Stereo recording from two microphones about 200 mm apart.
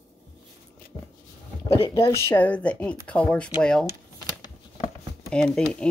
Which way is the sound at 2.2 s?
10° left (ahead or behind).